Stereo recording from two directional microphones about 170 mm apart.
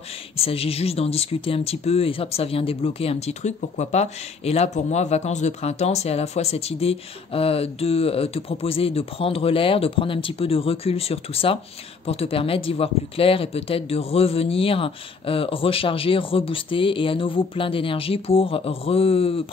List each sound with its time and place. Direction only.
0.4 s speech: 35° left (ahead or behind)